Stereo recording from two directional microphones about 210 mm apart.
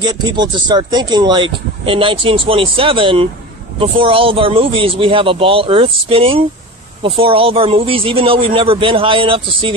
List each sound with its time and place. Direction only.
0.0 s speech: 20° right (ahead or behind)